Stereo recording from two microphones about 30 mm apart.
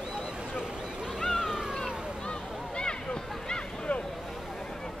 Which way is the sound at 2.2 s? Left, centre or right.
Left.